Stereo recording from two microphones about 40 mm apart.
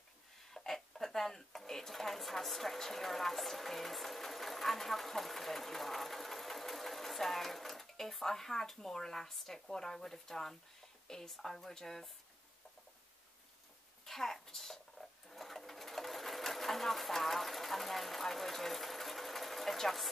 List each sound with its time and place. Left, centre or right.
0.5 s speech: centre
14.0 s sewing machine: centre